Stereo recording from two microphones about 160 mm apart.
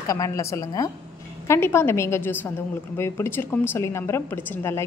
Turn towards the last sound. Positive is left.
turn(degrees=15)  # may be behind; listen again after turning